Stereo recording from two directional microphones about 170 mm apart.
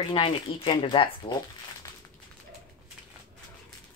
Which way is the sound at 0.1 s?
30° left (ahead or behind).